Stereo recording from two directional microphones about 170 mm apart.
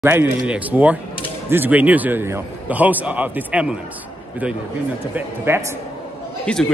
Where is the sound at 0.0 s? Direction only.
10° right (ahead or behind).